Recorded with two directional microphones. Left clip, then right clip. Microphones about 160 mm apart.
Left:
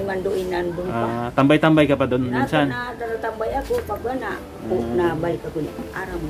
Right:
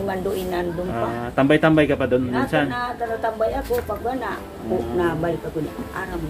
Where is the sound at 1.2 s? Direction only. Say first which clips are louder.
Even; 20° left (ahead or behind).